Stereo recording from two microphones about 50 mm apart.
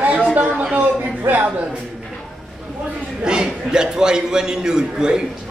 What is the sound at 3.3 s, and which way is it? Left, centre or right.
A man's voice, centre.